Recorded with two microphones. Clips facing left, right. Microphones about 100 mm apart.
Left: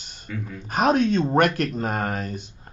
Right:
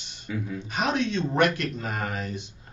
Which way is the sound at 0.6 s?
45° left (ahead or behind).